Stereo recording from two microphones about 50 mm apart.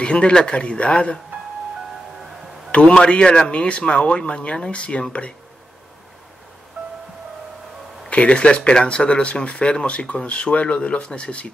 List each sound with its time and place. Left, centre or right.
0.0 s speech: centre
2.7 s speech: left
8.1 s speech: left